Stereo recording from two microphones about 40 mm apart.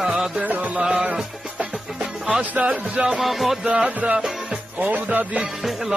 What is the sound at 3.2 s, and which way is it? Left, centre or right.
Music, centre.